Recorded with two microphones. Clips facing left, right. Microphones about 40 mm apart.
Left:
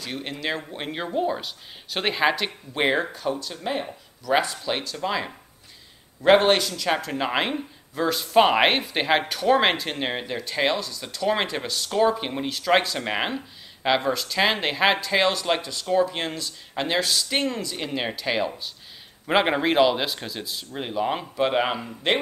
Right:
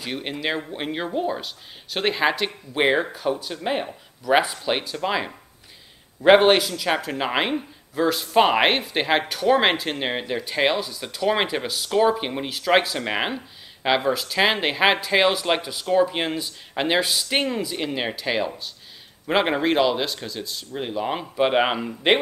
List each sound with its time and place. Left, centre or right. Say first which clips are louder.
0.0 s speech: right 3 dB; centre
21.4 s speech: right 4 dB; centre